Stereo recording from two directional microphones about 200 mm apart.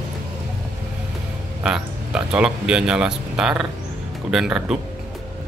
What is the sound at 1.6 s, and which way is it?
Speech, 5° right (ahead or behind).